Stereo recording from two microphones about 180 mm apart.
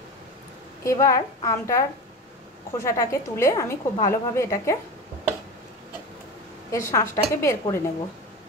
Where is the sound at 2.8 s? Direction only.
15° left (ahead or behind).